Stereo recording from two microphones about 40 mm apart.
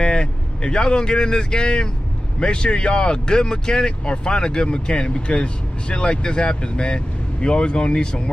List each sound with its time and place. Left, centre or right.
0.0 s speech: left